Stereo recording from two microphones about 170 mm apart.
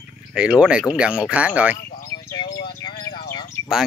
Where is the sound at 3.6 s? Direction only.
35° right (ahead or behind).